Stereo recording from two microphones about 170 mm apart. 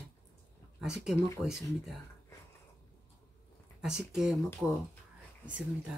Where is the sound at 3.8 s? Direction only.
5° right (ahead or behind).